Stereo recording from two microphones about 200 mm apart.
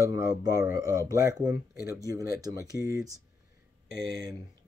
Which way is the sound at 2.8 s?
15° right (ahead or behind).